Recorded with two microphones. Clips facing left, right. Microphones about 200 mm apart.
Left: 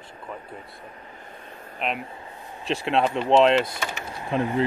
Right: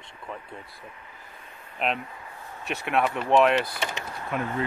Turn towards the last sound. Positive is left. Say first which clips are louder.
# left 5 dB
turn(degrees=20)  # may be behind; listen again after turning